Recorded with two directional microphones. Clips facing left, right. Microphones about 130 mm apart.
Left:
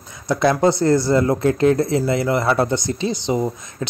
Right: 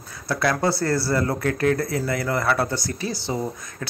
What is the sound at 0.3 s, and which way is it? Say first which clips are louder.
Speech: left 6 dB; 20° left (ahead or behind).